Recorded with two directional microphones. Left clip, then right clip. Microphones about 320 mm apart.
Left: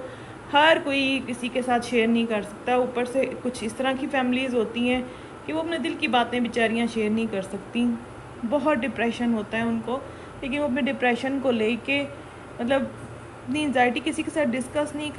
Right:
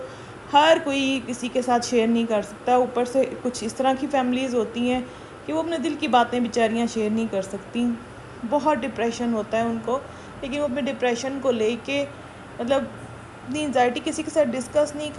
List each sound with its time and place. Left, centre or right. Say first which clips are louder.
0.5 s a woman's voice: right 2 dB; centre